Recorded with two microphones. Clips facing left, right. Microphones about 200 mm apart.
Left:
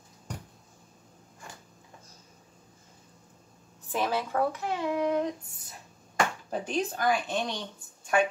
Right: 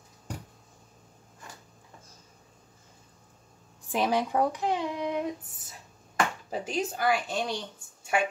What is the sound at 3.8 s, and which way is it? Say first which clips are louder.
Speech: right 3 dB; 15° right (ahead or behind).